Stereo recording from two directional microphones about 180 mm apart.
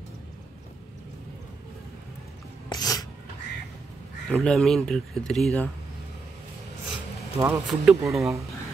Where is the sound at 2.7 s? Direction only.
20° left (ahead or behind).